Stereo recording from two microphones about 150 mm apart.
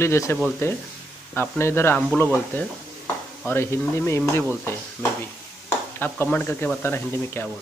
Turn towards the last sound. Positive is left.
turn(degrees=15)  # may be behind; listen again after turning